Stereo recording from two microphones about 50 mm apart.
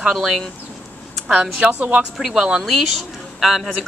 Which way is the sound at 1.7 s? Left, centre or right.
Right.